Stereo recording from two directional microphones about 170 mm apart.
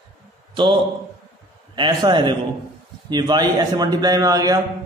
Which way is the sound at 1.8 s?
25° right (ahead or behind).